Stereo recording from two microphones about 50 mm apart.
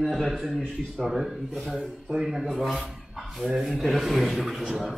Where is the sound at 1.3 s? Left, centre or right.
Centre.